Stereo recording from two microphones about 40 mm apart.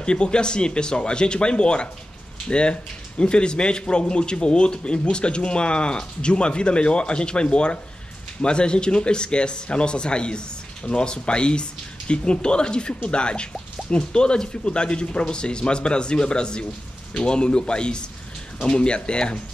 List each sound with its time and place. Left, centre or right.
0.0 s speech: left